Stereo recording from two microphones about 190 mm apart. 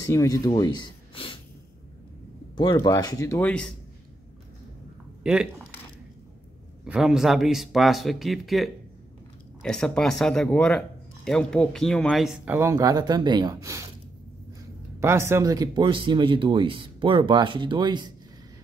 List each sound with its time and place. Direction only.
0.0 s speech: 15° left (ahead or behind)
2.5 s speech: 25° left (ahead or behind)
5.2 s speech: 5° right (ahead or behind)
6.8 s speech: 5° right (ahead or behind)
12.5 s speech: 15° right (ahead or behind)
15.0 s speech: 15° right (ahead or behind)